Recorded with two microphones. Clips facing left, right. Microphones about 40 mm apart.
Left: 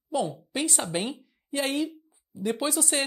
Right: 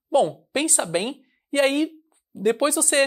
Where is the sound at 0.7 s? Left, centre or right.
Centre.